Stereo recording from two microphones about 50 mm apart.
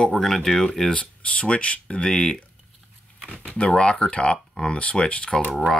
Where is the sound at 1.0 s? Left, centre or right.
Left.